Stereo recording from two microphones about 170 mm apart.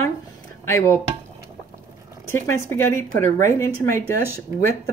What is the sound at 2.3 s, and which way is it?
Speech, 15° left (ahead or behind).